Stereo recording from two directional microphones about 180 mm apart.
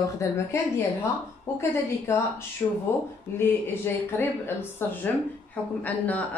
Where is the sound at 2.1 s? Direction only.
15° left (ahead or behind).